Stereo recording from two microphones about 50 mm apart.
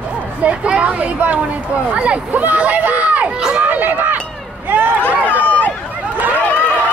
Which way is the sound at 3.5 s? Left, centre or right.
Right.